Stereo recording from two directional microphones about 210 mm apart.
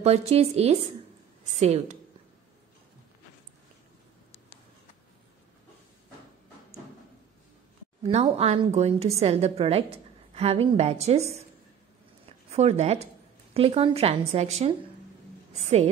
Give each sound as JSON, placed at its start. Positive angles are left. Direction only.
{"t": 0.0, "sound": "a woman's voice", "side_deg": -30}
{"t": 8.0, "sound": "a woman's voice", "side_deg": -30}